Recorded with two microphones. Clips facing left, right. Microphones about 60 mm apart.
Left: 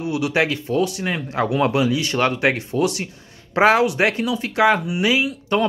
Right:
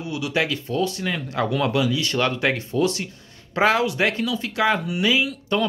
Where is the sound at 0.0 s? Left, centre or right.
Left.